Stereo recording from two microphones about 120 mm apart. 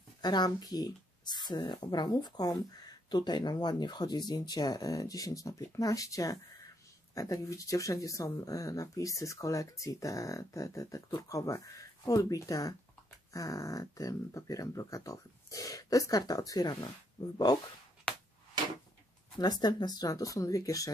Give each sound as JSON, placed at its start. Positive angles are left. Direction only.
{"t": 0.2, "sound": "speech", "side_deg": 35}
{"t": 18.1, "sound": "a sound", "side_deg": 10}
{"t": 19.3, "sound": "speech", "side_deg": 35}